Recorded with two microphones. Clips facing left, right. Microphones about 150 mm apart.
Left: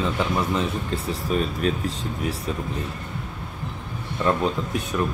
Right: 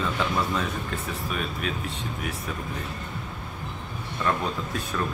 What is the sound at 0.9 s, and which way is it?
Speech, 35° left (ahead or behind).